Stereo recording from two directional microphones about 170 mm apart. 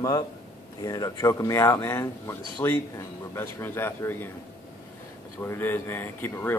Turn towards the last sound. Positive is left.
turn(degrees=10)  # may be behind; listen again after turning